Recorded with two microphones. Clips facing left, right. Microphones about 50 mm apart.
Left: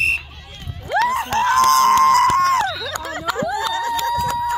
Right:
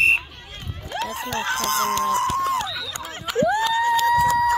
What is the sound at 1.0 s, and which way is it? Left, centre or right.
Crowd, left.